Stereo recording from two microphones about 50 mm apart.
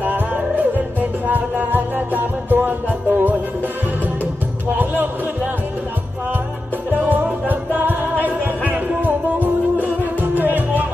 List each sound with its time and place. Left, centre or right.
0.7 s music: right
4.7 s a sound: right
6.9 s music: right